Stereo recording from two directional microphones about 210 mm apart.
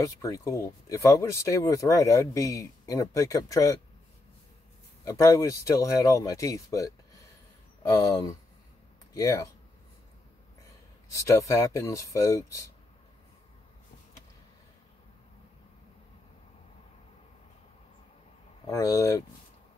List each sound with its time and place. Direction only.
0.0 s speech: 15° left (ahead or behind)
5.0 s speech: 15° left (ahead or behind)
7.9 s speech: 15° left (ahead or behind)
11.1 s speech: 15° left (ahead or behind)
18.7 s speech: 15° left (ahead or behind)